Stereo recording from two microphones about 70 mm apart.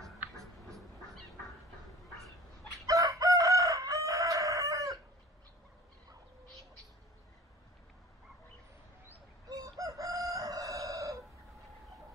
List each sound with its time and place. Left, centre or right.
2.9 s chicken: right
9.5 s chicken: right